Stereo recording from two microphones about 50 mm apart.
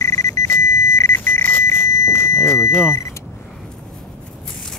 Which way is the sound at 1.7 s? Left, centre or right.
Left.